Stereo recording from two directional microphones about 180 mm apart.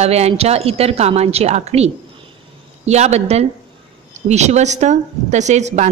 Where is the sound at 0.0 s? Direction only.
35° right (ahead or behind).